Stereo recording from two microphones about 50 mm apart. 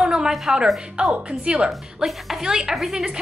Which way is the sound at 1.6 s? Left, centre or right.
Centre.